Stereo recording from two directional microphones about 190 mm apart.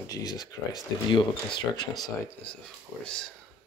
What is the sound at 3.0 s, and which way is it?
Speech, 5° left (ahead or behind).